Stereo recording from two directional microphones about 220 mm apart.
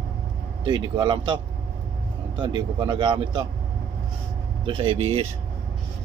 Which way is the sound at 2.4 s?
20° right (ahead or behind).